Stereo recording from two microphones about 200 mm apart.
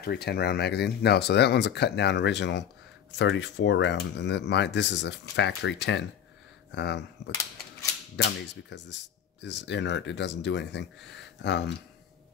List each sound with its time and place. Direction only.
0.0 s speech: 55° left (ahead or behind)
8.2 s speech: 60° left (ahead or behind)